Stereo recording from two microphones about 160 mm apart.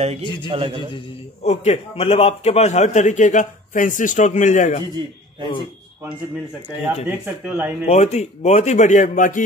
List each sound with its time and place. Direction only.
0.5 s a man's voice: 35° right (ahead or behind)
0.9 s speech: 40° left (ahead or behind)
5.4 s a man's voice: 30° left (ahead or behind)
7.1 s speech: 10° right (ahead or behind)
7.8 s speech: 45° left (ahead or behind)